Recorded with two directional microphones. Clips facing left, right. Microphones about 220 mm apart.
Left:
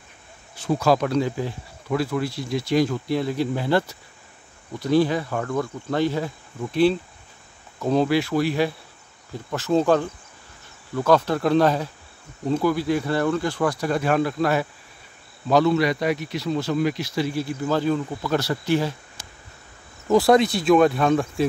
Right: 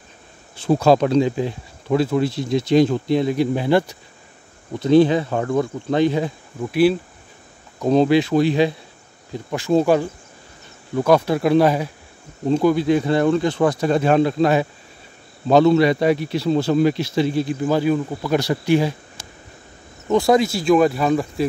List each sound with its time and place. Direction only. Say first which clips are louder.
0.6 s speech: right 5 dB; 30° right (ahead or behind); by 7.0 s 10° right (ahead or behind)
7.8 s speech: right 5 dB; 20° right (ahead or behind)
20.1 s speech: even; centre (ahead or behind)